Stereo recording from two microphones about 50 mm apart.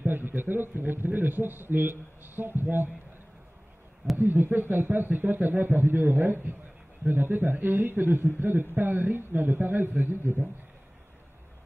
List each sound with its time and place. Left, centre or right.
0.0 s speech: right
4.2 s speech: right